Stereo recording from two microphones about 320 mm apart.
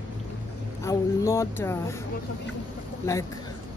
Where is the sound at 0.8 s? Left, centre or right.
Centre.